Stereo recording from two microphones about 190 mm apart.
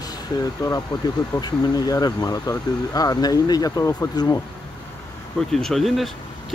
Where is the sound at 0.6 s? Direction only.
20° left (ahead or behind).